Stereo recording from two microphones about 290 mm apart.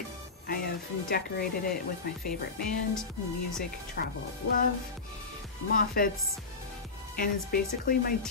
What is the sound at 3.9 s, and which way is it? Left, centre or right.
Speech, left.